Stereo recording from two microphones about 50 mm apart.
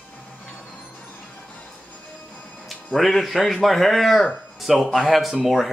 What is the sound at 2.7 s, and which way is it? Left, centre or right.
Speech, centre.